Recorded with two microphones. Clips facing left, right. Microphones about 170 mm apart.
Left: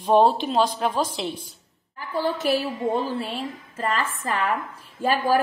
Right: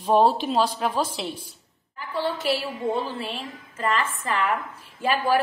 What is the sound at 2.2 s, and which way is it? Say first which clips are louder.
Speech: left 2 dB; 45° left (ahead or behind).